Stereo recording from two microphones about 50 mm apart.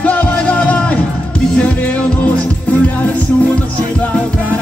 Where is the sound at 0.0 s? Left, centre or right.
Left.